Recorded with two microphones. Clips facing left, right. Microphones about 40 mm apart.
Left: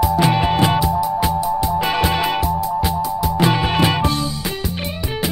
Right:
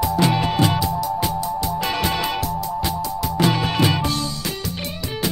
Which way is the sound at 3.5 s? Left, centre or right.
Centre.